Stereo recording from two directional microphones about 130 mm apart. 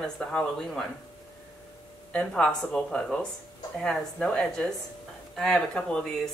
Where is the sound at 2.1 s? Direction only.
5° left (ahead or behind).